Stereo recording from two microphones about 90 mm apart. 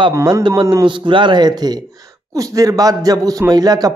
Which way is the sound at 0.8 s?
65° right (ahead or behind).